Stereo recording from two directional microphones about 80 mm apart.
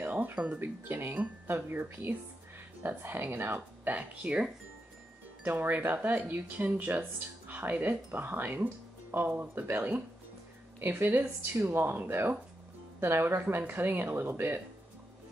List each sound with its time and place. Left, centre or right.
0.0 s speech: right